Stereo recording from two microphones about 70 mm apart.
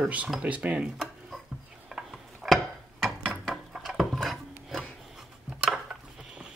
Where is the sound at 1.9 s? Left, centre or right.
Centre.